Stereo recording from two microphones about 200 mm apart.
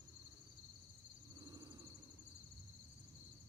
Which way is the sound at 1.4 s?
20° right (ahead or behind).